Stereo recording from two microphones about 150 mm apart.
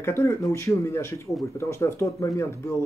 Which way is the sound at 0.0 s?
15° left (ahead or behind).